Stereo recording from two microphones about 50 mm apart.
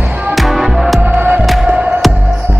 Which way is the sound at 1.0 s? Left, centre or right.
Right.